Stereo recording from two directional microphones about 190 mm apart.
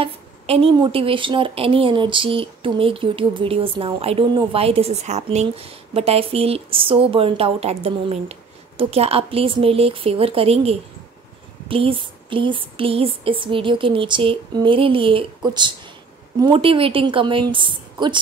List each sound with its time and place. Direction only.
0.0 s a woman's voice: 30° right (ahead or behind)